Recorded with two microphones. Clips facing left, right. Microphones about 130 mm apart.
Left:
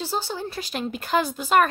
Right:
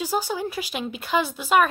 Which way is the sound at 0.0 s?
10° right (ahead or behind).